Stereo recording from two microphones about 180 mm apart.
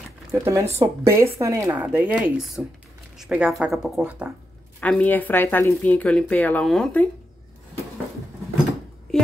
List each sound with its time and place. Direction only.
0.3 s speech: 15° right (ahead or behind)
4.7 s a woman's voice: 10° left (ahead or behind)